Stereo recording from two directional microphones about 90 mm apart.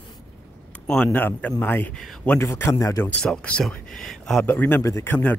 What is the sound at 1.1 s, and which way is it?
A man's voice, 20° left (ahead or behind).